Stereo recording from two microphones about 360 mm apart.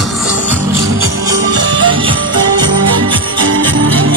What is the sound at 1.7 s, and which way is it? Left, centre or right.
Music, centre.